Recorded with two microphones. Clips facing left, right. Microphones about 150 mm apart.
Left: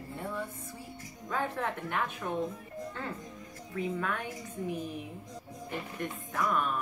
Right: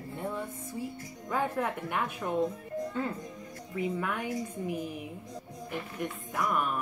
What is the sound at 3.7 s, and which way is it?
Speech, 15° right (ahead or behind).